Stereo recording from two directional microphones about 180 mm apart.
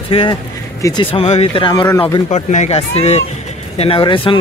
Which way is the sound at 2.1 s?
35° left (ahead or behind).